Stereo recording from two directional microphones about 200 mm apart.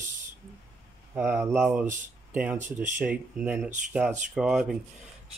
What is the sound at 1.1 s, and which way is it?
Speech, 10° right (ahead or behind).